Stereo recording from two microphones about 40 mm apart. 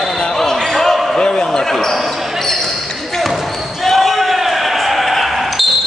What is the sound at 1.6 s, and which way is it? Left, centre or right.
Speech, centre.